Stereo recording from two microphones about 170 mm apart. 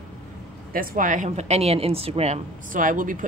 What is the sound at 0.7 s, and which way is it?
A woman's voice, 55° right (ahead or behind).